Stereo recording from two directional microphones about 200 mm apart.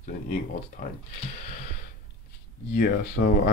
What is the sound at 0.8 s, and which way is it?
Speech, 40° left (ahead or behind).